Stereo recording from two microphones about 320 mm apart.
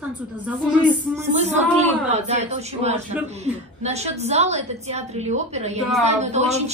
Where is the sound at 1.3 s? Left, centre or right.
Right.